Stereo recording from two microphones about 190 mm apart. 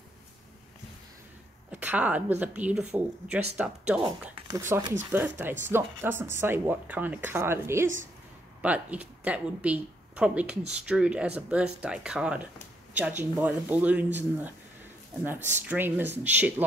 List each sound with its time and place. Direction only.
1.7 s a woman's voice: 5° right (ahead or behind)
4.4 s speech: 15° right (ahead or behind)
15.7 s speech: 10° right (ahead or behind)